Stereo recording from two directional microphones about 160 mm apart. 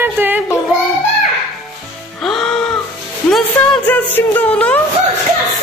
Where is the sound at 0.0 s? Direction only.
10° right (ahead or behind).